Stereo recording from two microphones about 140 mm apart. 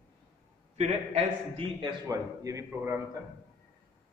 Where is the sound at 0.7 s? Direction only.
45° right (ahead or behind).